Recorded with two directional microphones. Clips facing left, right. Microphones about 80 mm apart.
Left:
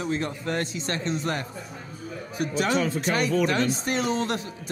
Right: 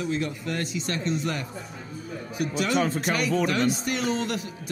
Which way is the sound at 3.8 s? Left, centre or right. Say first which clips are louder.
Left 1 dB; left.